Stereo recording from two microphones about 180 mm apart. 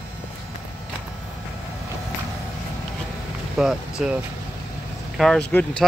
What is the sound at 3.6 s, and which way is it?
Speech, 5° right (ahead or behind).